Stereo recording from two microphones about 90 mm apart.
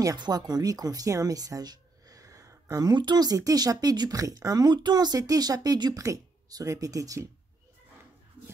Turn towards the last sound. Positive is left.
turn(degrees=-40)  # may be behind; listen again after turning